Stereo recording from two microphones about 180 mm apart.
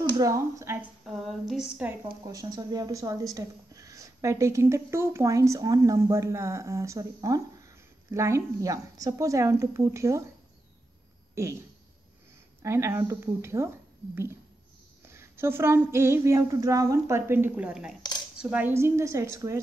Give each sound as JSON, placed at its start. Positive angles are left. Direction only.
{"t": 0.2, "sound": "speech", "side_deg": -15}
{"t": 1.0, "sound": "a sound", "side_deg": 0}
{"t": 2.2, "sound": "speech", "side_deg": -20}
{"t": 11.4, "sound": "speech", "side_deg": -15}
{"t": 12.6, "sound": "speech", "side_deg": -15}